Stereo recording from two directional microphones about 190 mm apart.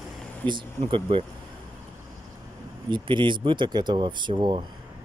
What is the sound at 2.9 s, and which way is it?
Speech, 25° right (ahead or behind).